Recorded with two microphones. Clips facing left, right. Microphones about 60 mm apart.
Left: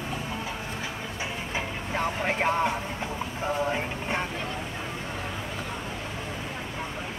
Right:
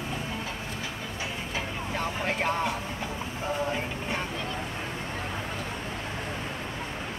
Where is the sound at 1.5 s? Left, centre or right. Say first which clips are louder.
Left 2 dB; centre.